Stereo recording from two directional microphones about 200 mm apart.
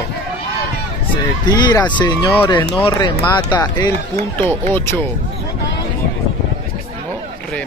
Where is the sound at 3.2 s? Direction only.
5° left (ahead or behind).